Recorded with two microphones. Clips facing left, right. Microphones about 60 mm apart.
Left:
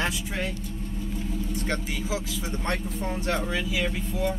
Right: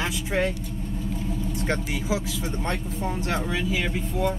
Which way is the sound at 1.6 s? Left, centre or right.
Centre.